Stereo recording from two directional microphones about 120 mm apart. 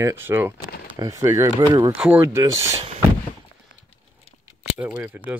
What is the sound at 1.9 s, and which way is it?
Speech, 15° right (ahead or behind).